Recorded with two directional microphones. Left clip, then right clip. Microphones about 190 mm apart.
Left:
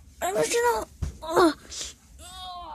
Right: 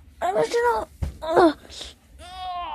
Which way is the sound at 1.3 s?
Centre (ahead or behind).